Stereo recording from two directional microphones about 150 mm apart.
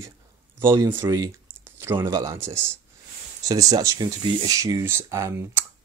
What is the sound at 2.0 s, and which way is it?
Speech, 25° right (ahead or behind).